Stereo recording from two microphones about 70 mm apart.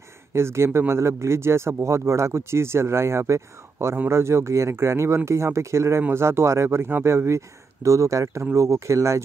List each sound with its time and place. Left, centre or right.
0.3 s speech: right